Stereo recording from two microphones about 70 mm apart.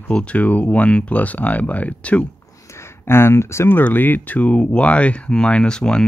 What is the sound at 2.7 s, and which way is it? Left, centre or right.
Speech, left.